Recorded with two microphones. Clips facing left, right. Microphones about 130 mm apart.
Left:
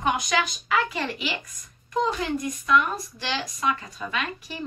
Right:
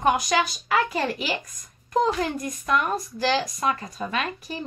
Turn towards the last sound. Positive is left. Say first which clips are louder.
# right 2 dB
turn(degrees=-35)  # may be behind; listen again after turning